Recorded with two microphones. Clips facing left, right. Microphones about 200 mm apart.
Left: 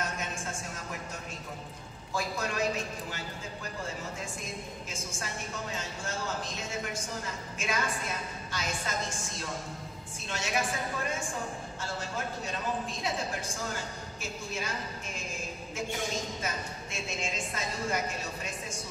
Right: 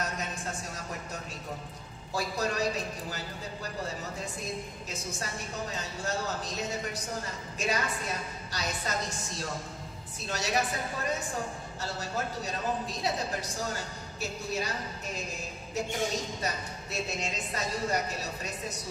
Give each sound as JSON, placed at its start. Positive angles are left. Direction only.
{"t": 2.1, "sound": "a woman's voice", "side_deg": -35}
{"t": 5.7, "sound": "a woman's voice", "side_deg": -35}
{"t": 10.3, "sound": "a woman's voice", "side_deg": -40}
{"t": 11.8, "sound": "a woman's voice", "side_deg": -40}
{"t": 16.4, "sound": "a woman's voice", "side_deg": -40}